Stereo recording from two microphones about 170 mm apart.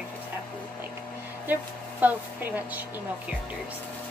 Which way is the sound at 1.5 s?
10° right (ahead or behind).